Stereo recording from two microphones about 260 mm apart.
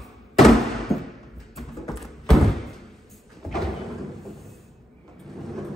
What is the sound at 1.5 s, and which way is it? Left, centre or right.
Music, centre.